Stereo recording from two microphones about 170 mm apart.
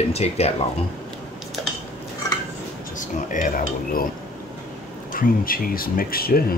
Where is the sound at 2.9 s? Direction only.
50° left (ahead or behind).